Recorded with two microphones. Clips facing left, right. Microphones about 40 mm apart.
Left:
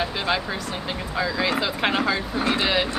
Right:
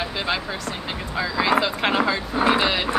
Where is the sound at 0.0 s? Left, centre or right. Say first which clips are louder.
Left 1 dB; centre.